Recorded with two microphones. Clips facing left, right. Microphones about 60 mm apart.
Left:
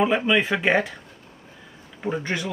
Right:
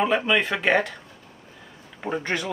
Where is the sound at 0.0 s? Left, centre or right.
Centre.